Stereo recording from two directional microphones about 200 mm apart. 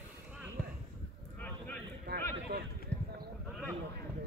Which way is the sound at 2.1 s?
55° right (ahead or behind).